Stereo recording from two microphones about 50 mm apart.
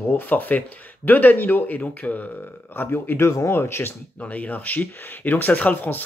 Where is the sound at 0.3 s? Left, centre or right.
Left.